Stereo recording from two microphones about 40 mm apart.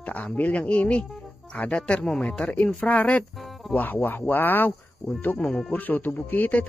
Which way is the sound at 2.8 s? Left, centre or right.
Left.